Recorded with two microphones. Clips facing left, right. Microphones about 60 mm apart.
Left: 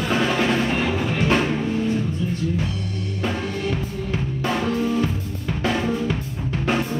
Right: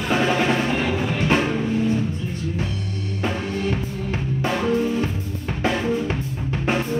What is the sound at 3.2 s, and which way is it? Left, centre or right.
Music, right.